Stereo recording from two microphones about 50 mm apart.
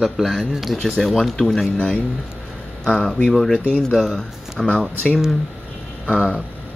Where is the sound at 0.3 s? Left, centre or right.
Centre.